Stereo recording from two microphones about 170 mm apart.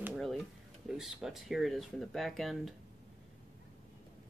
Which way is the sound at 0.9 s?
5° right (ahead or behind).